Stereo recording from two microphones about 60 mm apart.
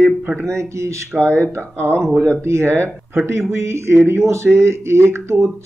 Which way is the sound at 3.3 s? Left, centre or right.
Right.